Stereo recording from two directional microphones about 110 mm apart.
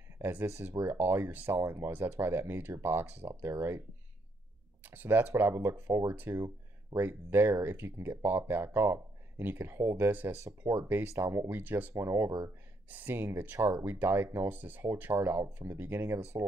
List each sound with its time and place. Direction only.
0.2 s speech: 15° right (ahead or behind)
4.8 s speech: 15° right (ahead or behind)